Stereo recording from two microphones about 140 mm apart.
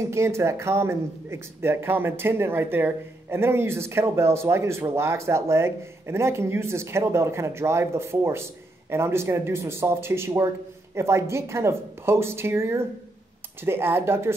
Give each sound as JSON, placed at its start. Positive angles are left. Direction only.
{"t": 0.0, "sound": "speech", "side_deg": -20}